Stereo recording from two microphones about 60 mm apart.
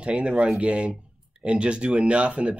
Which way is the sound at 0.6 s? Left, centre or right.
Centre.